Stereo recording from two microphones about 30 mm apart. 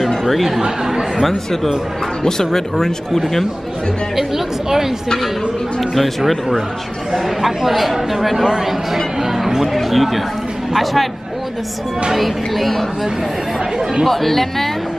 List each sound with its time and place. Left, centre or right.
0.1 s chatter: centre
0.6 s speech: centre
1.2 s speech: centre
4.2 s speech: centre
5.8 s speech: centre
12.2 s speech: centre
14.0 s speech: centre